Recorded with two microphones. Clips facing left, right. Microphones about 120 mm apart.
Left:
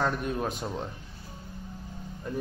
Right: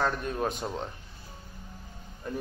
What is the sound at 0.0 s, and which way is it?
Speech, centre (ahead or behind).